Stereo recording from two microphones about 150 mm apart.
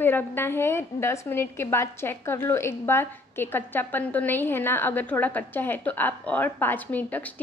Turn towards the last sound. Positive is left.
turn(degrees=10)  # may be behind; listen again after turning